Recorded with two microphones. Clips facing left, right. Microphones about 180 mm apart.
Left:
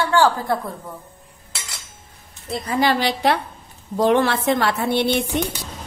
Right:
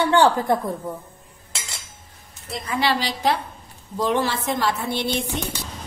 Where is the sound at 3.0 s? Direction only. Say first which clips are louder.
Left 3 dB; 65° left (ahead or behind).